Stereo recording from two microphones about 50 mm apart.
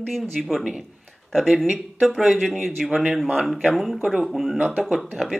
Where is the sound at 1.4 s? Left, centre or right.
Centre.